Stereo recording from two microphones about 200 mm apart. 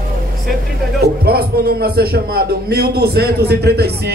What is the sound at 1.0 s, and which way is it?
A man's voice, 50° right (ahead or behind).